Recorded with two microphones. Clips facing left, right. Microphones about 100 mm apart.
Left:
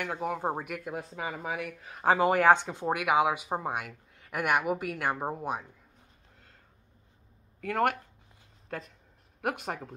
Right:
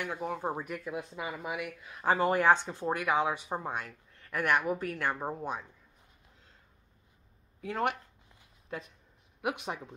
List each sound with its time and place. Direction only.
0.0 s speech: 65° left (ahead or behind)
0.4 s speech: 40° left (ahead or behind)
2.5 s speech: 20° left (ahead or behind)
7.6 s speech: 55° left (ahead or behind)
9.4 s speech: 45° left (ahead or behind)